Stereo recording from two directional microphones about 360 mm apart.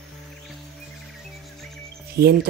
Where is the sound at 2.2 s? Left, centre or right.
Right.